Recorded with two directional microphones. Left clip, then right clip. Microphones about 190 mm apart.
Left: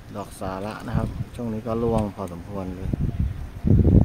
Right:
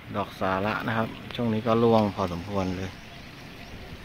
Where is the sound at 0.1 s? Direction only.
Centre (ahead or behind).